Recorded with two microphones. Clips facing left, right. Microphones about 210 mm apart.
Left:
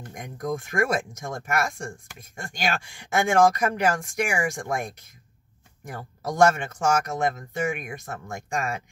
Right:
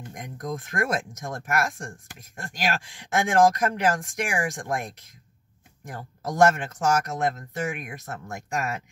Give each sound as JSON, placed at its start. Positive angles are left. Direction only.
{"t": 0.1, "sound": "speech", "side_deg": 0}